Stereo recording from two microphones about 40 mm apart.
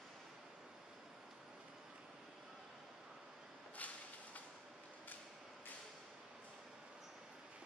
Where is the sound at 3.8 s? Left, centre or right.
Left.